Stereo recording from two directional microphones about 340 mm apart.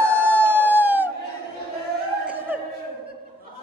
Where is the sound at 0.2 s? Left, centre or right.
Centre.